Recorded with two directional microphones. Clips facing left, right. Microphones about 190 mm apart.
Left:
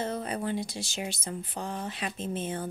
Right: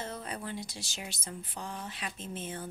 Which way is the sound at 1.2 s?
55° left (ahead or behind).